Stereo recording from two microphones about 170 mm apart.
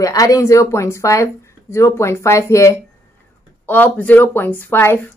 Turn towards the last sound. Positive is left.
turn(degrees=10)  # may be behind; listen again after turning